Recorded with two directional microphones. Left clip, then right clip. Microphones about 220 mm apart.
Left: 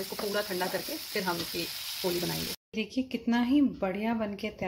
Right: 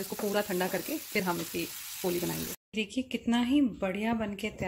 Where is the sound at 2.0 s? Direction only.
15° right (ahead or behind).